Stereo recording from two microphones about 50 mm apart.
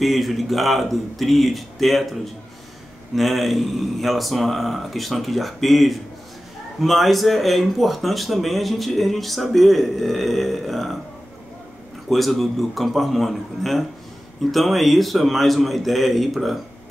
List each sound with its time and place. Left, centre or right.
0.0 s speech: centre
12.1 s speech: centre